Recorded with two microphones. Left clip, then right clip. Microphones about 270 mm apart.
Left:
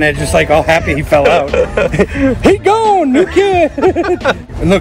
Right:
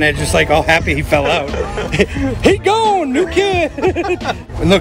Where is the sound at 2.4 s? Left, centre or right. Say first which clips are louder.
Left 2 dB; centre.